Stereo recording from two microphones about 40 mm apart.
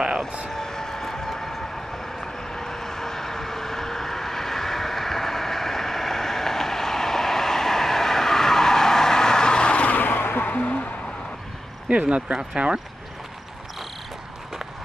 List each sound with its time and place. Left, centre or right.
0.5 s vehicle: centre
9.8 s vehicle: left
10.5 s owl: left
11.9 s speech: right